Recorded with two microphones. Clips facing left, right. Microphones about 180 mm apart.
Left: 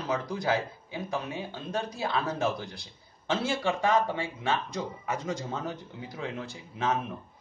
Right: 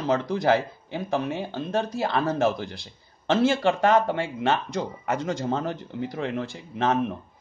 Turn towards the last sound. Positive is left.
turn(degrees=-70)  # may be behind; listen again after turning